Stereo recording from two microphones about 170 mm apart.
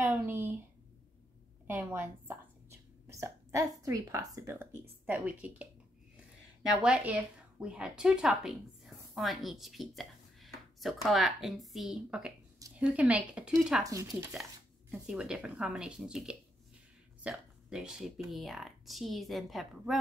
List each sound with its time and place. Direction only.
0.0 s a sound: 10° right (ahead or behind)
1.7 s speech: 10° right (ahead or behind)
6.8 s a woman's voice: 5° right (ahead or behind)
13.8 s speech: 20° right (ahead or behind)
14.3 s speech: centre (ahead or behind)